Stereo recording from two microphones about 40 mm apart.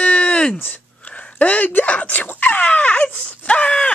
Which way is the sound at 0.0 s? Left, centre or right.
Left.